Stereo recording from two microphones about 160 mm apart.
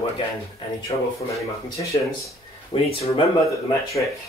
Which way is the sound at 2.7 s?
35° left (ahead or behind).